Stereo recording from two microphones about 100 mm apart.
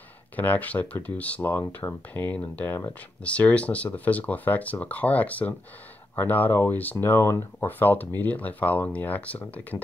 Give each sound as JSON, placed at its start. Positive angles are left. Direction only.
{"t": 0.4, "sound": "speech", "side_deg": 15}